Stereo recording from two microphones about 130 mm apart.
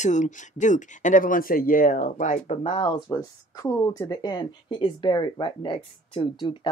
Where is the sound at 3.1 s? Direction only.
25° left (ahead or behind).